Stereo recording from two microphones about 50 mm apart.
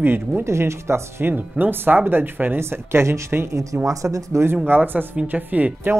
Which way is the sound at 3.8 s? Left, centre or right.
Right.